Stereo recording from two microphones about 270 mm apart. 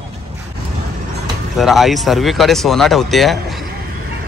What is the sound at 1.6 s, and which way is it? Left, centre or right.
Speech, centre.